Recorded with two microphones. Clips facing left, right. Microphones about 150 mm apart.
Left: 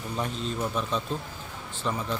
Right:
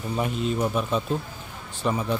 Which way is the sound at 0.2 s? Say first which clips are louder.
Right 5 dB; 10° right (ahead or behind).